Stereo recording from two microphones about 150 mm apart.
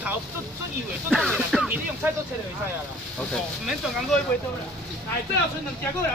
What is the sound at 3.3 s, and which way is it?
Speech, 5° left (ahead or behind).